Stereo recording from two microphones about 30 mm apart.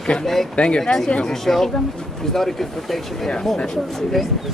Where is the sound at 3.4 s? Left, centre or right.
Centre.